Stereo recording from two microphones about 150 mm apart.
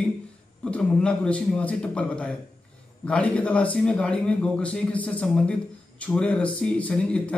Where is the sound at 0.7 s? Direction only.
10° left (ahead or behind).